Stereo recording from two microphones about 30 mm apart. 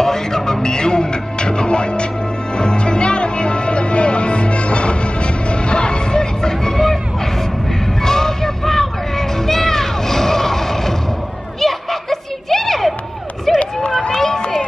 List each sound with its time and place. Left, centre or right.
0.0 s music: centre
8.0 s music: centre
9.5 s a sound: centre
13.5 s run: centre
13.8 s run: left
14.1 s run: centre